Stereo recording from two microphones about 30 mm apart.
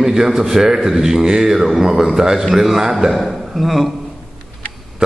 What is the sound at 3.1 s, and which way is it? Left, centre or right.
Speech, centre.